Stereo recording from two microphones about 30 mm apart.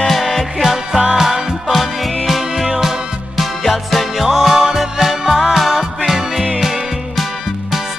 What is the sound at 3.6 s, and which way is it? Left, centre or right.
Music, centre.